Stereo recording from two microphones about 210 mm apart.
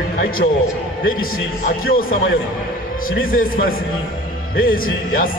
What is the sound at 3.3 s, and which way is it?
Speech, 40° left (ahead or behind).